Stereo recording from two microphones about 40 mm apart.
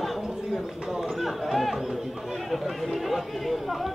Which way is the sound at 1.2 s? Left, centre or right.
Centre.